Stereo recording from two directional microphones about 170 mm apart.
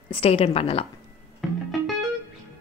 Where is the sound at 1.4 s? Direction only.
Centre (ahead or behind).